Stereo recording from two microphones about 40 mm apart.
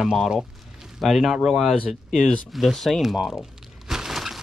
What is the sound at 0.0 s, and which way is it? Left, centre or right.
Speech, centre.